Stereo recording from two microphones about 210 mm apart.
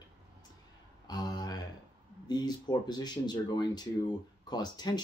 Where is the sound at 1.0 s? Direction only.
20° left (ahead or behind).